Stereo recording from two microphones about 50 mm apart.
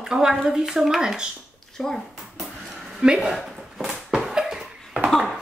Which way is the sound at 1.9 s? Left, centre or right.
Centre.